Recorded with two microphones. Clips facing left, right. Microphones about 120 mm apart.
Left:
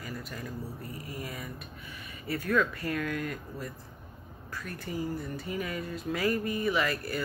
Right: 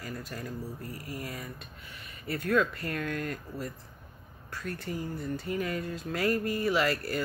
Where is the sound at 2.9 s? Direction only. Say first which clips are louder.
Left 1 dB; 5° left (ahead or behind).